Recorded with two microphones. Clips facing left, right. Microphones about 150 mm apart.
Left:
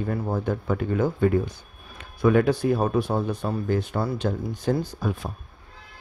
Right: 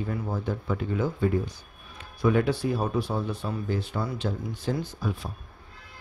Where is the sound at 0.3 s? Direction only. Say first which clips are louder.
Left 4 dB; 55° left (ahead or behind).